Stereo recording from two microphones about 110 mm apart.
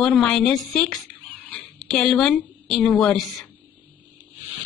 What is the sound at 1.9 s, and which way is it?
A woman's voice, 5° left (ahead or behind).